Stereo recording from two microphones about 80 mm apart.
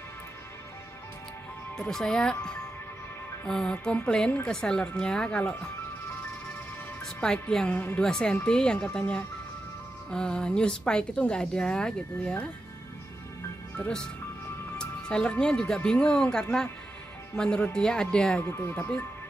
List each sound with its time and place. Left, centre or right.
1.8 s a woman's voice: centre
3.4 s a woman's voice: centre
7.7 s speech: left
8.0 s a woman's voice: centre
13.7 s a woman's voice: centre
18.4 s speech: left